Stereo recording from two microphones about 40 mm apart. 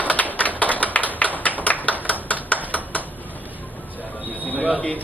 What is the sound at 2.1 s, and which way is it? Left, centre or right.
Hammer, left.